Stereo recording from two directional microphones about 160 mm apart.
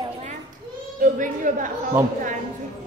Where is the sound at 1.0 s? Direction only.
55° right (ahead or behind).